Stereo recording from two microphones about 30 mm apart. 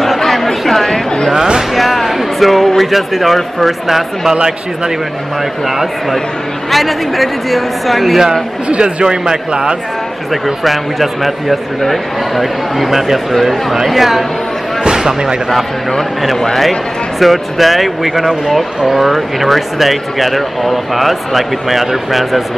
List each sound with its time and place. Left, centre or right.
0.2 s chatter: centre
1.3 s a sound: right
1.8 s a sound: centre
2.8 s speech: centre
6.7 s speech: centre
8.6 s a man's voice: right
10.3 s speech: centre
14.8 s a sound: right
17.2 s speech: centre